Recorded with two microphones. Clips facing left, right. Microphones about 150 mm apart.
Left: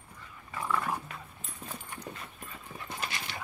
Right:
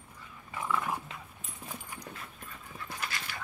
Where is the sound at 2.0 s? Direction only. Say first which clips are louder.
Left 2 dB; centre (ahead or behind).